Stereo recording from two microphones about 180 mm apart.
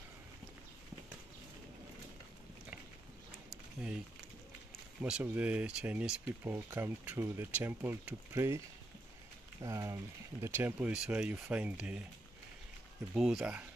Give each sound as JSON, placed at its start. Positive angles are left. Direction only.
{"t": 5.0, "sound": "speech", "side_deg": -5}
{"t": 13.1, "sound": "speech", "side_deg": -5}